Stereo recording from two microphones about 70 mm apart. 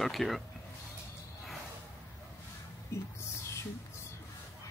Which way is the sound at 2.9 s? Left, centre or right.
Left.